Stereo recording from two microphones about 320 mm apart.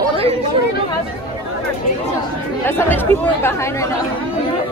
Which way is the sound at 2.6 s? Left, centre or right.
Centre.